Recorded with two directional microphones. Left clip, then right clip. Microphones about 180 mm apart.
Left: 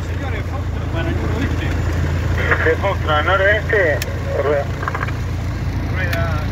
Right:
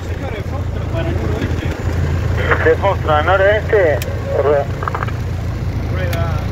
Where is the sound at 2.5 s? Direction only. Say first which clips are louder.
Right 4 dB; 55° right (ahead or behind).